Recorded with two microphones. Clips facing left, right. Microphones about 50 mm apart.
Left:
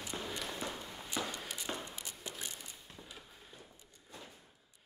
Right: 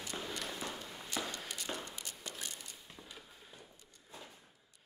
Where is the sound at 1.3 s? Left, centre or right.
Centre.